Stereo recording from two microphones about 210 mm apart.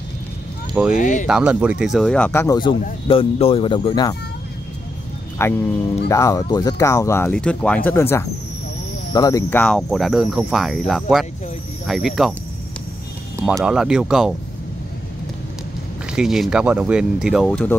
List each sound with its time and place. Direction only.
0.9 s speech: 40° left (ahead or behind)
1.2 s cricket: 5° right (ahead or behind); by 2.7 s 15° left (ahead or behind)
3.1 s speech: 25° left (ahead or behind)
5.4 s speech: 10° left (ahead or behind)
9.1 s cricket: 15° left (ahead or behind); by 12.4 s centre (ahead or behind)
13.4 s cricket: 10° right (ahead or behind)
16.1 s cricket: 5° right (ahead or behind)